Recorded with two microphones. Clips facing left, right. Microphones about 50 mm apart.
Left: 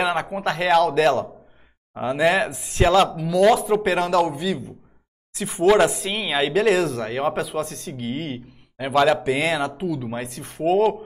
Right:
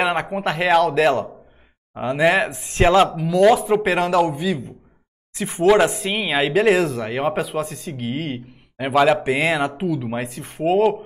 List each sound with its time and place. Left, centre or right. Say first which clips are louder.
0.0 s speech: right 2 dB; centre
2.5 s speech: right 2 dB; centre
2.8 s speech: right 2 dB; right
3.2 s speech: right 2 dB; centre